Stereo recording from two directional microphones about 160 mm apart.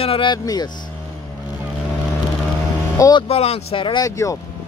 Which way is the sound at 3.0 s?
25° left (ahead or behind).